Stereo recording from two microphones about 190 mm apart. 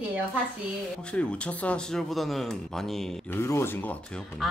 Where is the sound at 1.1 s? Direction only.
5° left (ahead or behind).